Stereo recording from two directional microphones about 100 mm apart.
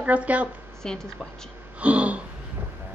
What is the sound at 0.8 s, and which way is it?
Speech, 5° left (ahead or behind).